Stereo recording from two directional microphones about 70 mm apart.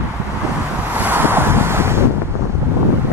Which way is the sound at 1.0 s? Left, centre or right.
Right.